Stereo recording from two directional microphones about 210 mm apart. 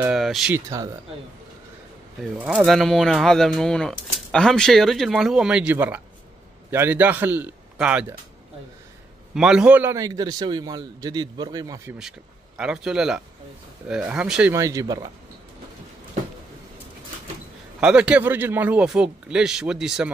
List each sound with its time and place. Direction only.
0.0 s speech: centre (ahead or behind)
0.7 s a man's voice: 15° right (ahead or behind)
2.3 s a man's voice: 5° right (ahead or behind)
9.3 s a man's voice: 5° right (ahead or behind)
12.5 s speech: 5° right (ahead or behind)
14.5 s a man's voice: 15° right (ahead or behind)
17.7 s speech: 5° right (ahead or behind)